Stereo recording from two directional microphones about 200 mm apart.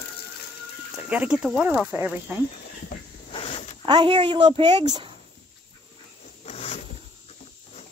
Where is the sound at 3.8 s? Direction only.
20° right (ahead or behind).